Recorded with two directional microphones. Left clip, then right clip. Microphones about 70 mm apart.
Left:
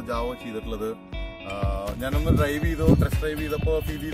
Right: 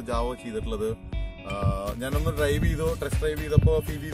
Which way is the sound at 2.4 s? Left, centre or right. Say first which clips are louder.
Right 1 dB; right.